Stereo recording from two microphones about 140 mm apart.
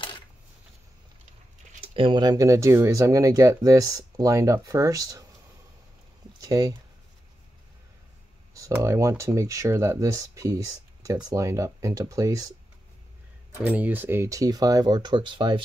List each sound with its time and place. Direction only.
2.0 s speech: 35° right (ahead or behind)
6.4 s speech: 25° right (ahead or behind)
8.7 s speech: 20° right (ahead or behind)
13.7 s speech: 15° right (ahead or behind); by 15.6 s 35° right (ahead or behind)